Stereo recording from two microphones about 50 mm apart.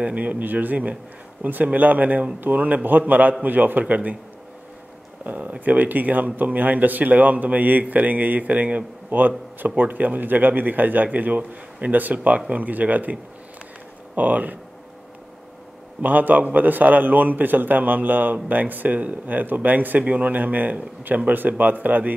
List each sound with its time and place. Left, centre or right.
0.0 s a man's voice: right
5.2 s a man's voice: right
16.0 s a man's voice: right